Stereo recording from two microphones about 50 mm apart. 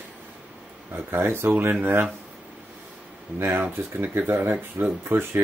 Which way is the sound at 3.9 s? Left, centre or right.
Right.